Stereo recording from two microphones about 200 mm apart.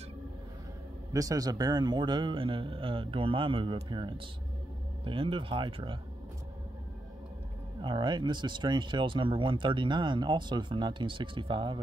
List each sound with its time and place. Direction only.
1.1 s speech: 15° right (ahead or behind)
7.8 s speech: 25° right (ahead or behind)